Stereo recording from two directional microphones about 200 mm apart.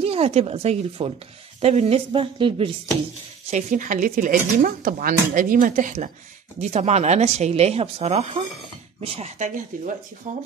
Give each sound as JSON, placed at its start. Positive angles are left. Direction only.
{"t": 0.0, "sound": "a woman's voice", "side_deg": -30}
{"t": 3.4, "sound": "speech", "side_deg": -40}